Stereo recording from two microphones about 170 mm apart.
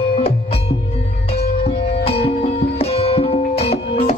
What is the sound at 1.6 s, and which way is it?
Music, 35° left (ahead or behind).